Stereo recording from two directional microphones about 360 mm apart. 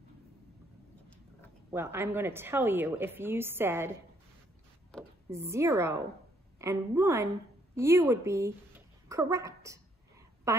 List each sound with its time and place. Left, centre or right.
1.7 s speech: centre
4.9 s a woman's voice: centre